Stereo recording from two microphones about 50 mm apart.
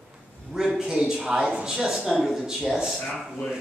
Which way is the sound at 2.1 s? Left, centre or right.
Centre.